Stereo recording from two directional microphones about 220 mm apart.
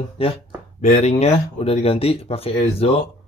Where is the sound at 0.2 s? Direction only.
25° left (ahead or behind).